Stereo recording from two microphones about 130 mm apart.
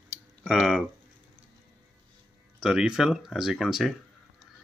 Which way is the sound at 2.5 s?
5° right (ahead or behind).